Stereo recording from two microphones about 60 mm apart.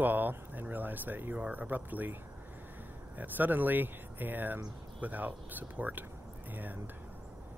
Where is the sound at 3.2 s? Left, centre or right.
Right.